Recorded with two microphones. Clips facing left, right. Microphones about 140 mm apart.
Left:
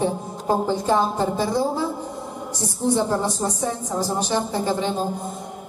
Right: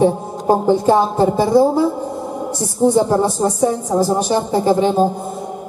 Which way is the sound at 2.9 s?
40° right (ahead or behind).